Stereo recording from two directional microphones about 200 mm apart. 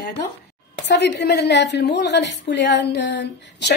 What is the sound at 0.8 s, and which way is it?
A woman's voice, 55° left (ahead or behind).